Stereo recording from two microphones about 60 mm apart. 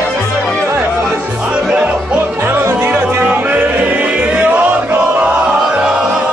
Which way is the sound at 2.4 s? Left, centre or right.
Right.